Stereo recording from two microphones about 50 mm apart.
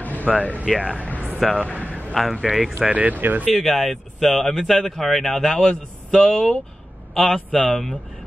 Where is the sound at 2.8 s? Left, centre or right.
Right.